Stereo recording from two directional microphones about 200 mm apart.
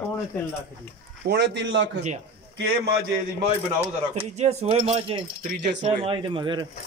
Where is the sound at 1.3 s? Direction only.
60° right (ahead or behind).